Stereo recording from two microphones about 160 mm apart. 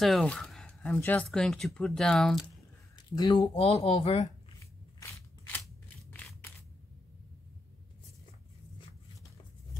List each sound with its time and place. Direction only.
0.0 s speech: 5° left (ahead or behind)
3.2 s speech: 30° left (ahead or behind)
5.0 s scissors: 15° left (ahead or behind)